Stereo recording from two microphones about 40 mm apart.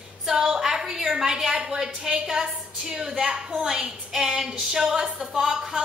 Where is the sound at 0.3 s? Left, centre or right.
Centre.